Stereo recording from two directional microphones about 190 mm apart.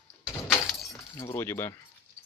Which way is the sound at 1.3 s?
15° left (ahead or behind).